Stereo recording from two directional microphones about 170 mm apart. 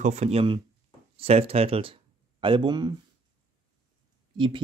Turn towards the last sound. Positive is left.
turn(degrees=-30)  # may be behind; listen again after turning